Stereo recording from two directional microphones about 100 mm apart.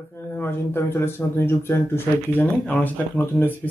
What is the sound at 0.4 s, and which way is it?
Speech, 25° left (ahead or behind).